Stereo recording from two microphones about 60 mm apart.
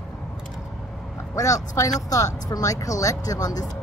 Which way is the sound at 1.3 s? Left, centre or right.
Left.